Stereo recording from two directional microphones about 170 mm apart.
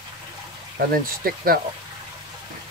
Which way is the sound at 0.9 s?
60° right (ahead or behind).